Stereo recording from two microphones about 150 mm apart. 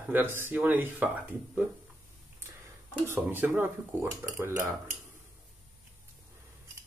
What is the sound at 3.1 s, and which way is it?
Speech, 15° right (ahead or behind).